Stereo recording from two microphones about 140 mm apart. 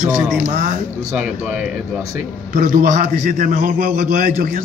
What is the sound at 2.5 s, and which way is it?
A man's voice, 85° right.